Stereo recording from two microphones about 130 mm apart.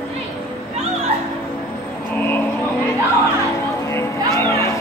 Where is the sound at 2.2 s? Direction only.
15° left (ahead or behind).